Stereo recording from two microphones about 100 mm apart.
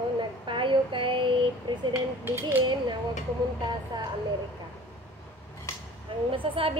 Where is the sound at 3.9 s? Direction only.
45° right (ahead or behind).